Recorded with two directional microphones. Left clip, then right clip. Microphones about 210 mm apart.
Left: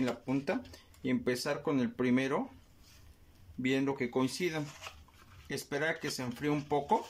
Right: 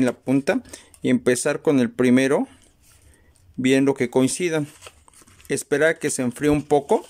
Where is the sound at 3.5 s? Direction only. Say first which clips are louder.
Right 13 dB; 50° right (ahead or behind).